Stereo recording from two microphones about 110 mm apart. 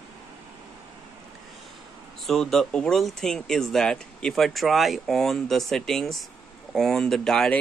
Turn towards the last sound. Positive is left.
turn(degrees=5)  # may be behind; listen again after turning